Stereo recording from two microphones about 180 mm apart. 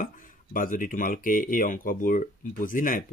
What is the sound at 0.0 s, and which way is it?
Speech, 50° left (ahead or behind).